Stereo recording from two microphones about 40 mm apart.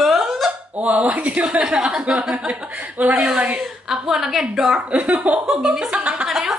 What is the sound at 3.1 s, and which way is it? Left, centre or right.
A woman's voice, centre.